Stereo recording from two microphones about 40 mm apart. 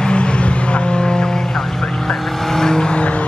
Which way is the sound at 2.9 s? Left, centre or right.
Left.